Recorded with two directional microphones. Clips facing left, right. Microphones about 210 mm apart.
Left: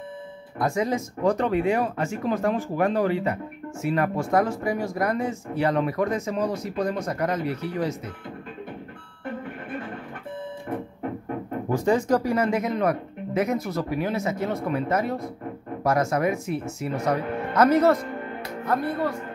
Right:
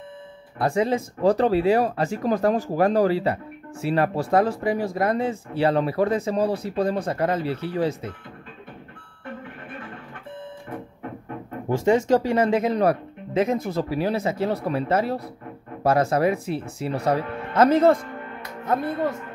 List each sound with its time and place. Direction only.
0.6 s speech: 30° right (ahead or behind)
11.7 s speech: 25° right (ahead or behind)